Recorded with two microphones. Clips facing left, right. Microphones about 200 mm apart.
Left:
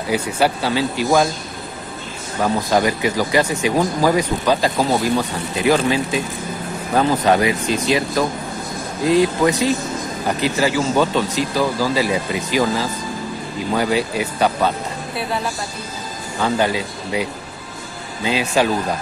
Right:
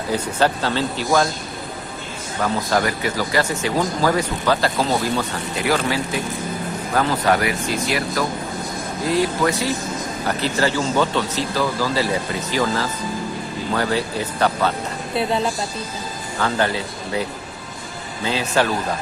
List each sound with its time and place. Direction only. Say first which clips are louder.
0.1 s speech: left 1 dB; 10° left (ahead or behind)
2.4 s speech: left 3 dB; 15° left (ahead or behind)
9.1 s speech: left 4 dB; 20° left (ahead or behind)
16.3 s speech: left 2 dB; 15° left (ahead or behind)